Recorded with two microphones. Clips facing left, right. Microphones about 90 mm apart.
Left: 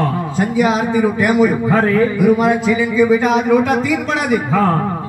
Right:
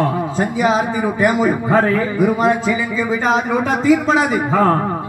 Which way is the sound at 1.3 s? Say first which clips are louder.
Left 2 dB; 30° right (ahead or behind).